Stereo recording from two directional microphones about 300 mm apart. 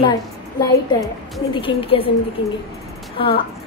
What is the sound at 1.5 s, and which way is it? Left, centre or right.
Speech, centre.